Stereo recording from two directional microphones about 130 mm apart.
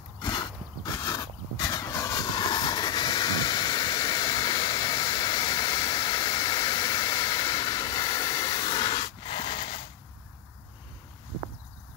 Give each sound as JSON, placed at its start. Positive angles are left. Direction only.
{"t": 0.2, "sound": "vehicle", "side_deg": 30}